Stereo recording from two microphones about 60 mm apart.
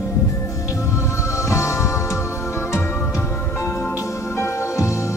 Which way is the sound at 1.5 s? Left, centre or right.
Left.